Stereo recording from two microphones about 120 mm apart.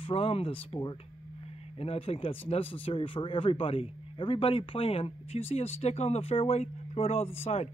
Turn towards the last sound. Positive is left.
turn(degrees=65)  # may be behind; listen again after turning